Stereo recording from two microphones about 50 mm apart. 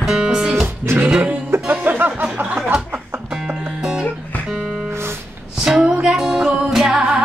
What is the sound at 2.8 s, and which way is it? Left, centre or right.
Music, right.